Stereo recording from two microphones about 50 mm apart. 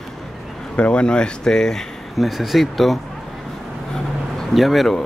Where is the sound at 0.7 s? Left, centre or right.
Left.